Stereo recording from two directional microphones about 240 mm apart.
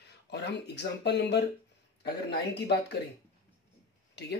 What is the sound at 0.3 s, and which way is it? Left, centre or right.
Speech, left.